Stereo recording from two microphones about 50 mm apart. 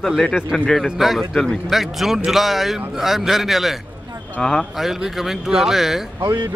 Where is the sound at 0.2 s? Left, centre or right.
Centre.